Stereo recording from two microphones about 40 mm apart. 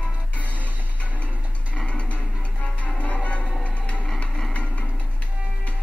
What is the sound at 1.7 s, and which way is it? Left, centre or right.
Music, left.